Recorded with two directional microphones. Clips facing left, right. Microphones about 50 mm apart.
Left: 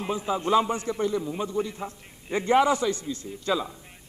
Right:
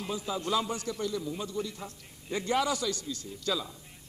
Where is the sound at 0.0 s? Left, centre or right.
Left.